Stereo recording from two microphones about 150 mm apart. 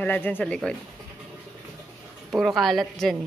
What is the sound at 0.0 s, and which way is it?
Speech, 15° left (ahead or behind).